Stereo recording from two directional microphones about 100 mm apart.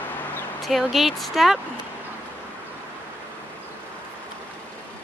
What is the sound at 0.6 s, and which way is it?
Speech, centre (ahead or behind).